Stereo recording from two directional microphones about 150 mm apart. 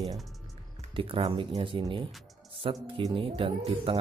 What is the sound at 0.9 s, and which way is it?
Speech, 35° right (ahead or behind).